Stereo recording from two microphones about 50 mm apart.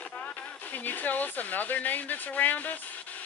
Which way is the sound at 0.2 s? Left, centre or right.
Left.